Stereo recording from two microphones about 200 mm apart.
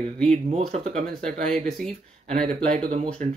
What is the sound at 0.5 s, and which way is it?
Speech, 30° right (ahead or behind).